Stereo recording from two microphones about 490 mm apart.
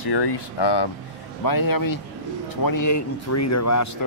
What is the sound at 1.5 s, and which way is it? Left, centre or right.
Speech, left.